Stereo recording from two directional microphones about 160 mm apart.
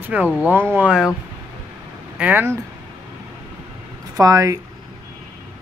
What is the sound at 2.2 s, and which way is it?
Speech, 10° right (ahead or behind).